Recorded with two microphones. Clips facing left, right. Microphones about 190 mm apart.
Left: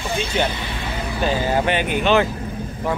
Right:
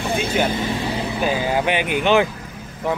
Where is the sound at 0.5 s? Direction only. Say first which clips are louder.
Right 5 dB; 40° right (ahead or behind).